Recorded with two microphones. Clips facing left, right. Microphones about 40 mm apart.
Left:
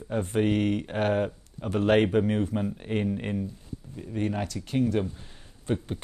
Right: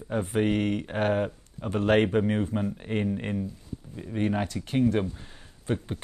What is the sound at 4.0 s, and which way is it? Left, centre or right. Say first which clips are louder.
Speech: right 2 dB; centre.